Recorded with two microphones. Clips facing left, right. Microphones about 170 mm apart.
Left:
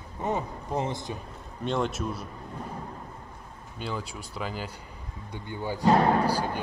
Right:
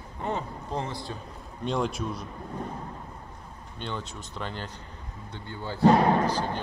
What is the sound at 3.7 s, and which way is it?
A man's voice, 5° left (ahead or behind).